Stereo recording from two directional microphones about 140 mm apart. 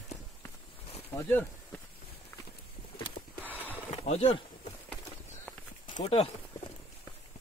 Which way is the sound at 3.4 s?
10° left (ahead or behind).